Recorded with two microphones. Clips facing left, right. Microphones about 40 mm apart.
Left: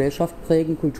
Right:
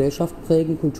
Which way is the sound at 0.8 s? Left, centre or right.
Left.